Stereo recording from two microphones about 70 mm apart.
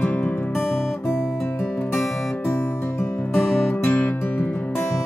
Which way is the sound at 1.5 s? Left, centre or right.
Left.